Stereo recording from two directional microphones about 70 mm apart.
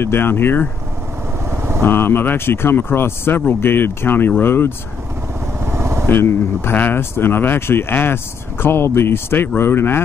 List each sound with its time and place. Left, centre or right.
0.0 s speech: left
1.5 s vehicle: right
1.8 s speech: left
5.7 s vehicle: right
6.0 s speech: left